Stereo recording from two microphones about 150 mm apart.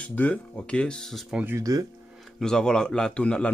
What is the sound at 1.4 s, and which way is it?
Speech, 20° right (ahead or behind).